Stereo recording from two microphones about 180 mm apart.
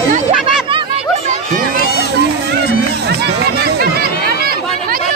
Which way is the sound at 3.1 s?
65° right (ahead or behind).